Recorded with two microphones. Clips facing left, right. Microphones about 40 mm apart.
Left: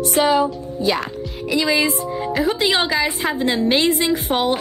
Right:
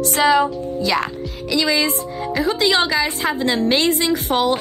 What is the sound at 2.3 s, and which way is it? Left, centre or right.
A woman's voice, centre.